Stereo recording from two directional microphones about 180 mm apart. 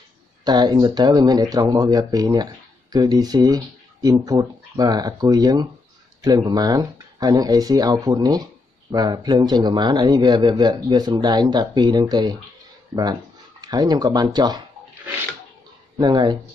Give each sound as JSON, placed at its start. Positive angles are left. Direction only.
{"t": 0.4, "sound": "speech", "side_deg": -25}
{"t": 16.0, "sound": "speech", "side_deg": -25}